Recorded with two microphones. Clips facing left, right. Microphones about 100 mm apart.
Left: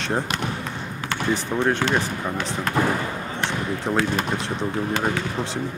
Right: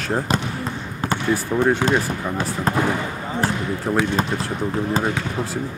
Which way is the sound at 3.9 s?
5° left (ahead or behind).